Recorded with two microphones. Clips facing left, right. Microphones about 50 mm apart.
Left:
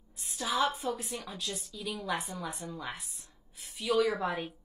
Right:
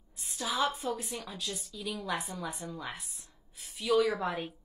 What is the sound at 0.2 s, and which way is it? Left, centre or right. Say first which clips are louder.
A woman's voice: left 1 dB; centre.